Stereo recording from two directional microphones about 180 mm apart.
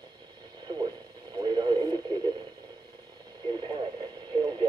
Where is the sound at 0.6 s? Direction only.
25° right (ahead or behind).